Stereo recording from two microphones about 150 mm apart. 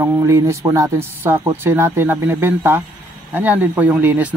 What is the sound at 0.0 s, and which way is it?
Speech, 20° right (ahead or behind).